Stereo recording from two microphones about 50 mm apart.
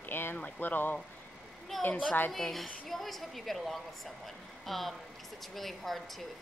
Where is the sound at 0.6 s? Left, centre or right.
Left.